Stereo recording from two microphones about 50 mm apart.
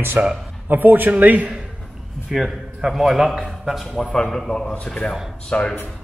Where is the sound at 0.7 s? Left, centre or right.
Right.